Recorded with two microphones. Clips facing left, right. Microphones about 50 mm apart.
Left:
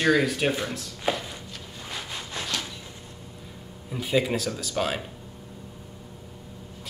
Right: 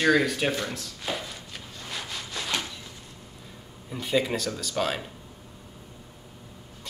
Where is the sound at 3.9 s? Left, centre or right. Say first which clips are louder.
Left 1 dB; centre.